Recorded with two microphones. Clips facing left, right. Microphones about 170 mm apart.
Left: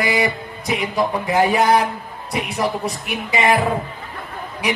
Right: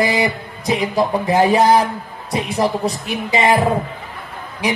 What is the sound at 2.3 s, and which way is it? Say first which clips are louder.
Speech: right 3 dB; 30° right (ahead or behind).